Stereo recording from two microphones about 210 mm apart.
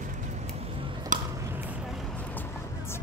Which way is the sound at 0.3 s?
25° right (ahead or behind).